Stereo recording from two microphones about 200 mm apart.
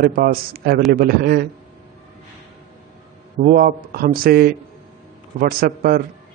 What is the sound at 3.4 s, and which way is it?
Speech, 45° right (ahead or behind).